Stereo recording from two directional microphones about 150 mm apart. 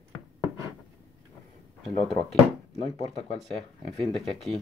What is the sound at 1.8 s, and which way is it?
Speech, centre (ahead or behind).